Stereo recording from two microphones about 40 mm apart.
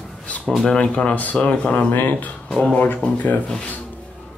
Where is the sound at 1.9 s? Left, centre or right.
Left.